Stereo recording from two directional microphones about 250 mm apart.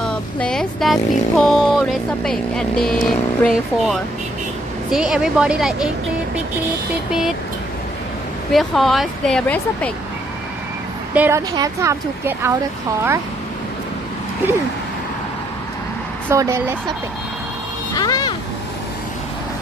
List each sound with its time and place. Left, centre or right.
0.0 s speech: centre
4.9 s speech: centre
7.1 s speech: centre
8.5 s speech: centre
11.1 s speech: centre
16.3 s speech: centre
17.9 s speech: centre